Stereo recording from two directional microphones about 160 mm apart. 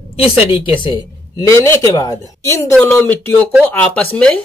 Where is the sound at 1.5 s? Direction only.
20° left (ahead or behind).